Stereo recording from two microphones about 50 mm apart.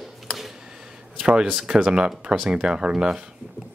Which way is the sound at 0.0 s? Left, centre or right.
Centre.